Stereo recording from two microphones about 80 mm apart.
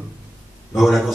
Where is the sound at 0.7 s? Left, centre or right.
Centre.